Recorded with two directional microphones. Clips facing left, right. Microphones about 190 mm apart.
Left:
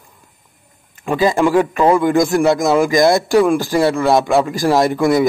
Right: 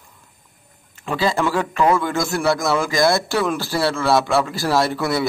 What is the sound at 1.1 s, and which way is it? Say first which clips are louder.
A man's voice: left 6 dB; 15° left (ahead or behind).